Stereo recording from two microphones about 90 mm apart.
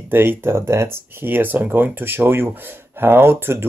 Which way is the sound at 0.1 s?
25° right (ahead or behind).